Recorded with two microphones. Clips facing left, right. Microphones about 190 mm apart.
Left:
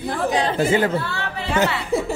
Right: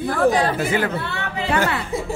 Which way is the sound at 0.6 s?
25° left (ahead or behind).